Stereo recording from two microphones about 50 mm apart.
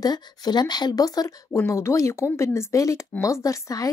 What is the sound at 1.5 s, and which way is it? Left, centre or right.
A woman's voice, left.